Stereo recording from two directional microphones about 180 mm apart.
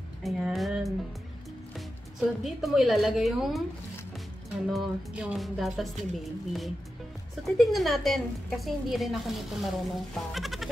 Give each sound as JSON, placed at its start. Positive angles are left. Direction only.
{"t": 0.2, "sound": "a woman's voice", "side_deg": 0}
{"t": 2.1, "sound": "a woman's voice", "side_deg": 0}
{"t": 4.6, "sound": "a woman's voice", "side_deg": -5}